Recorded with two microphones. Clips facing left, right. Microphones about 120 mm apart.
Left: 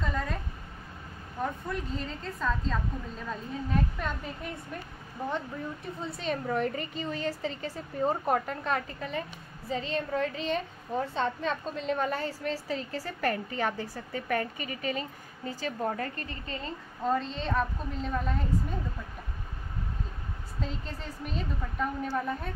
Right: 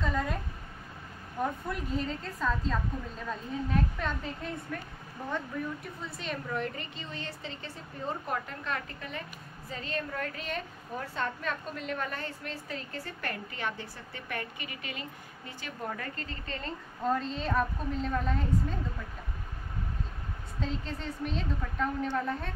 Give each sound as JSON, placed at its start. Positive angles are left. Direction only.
{"t": 0.0, "sound": "a sound", "side_deg": -5}
{"t": 1.4, "sound": "a woman's voice", "side_deg": -5}
{"t": 5.9, "sound": "a woman's voice", "side_deg": 35}
{"t": 17.0, "sound": "a woman's voice", "side_deg": 0}
{"t": 20.6, "sound": "a woman's voice", "side_deg": 5}